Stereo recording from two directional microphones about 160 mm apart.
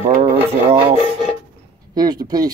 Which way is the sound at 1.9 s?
25° right (ahead or behind).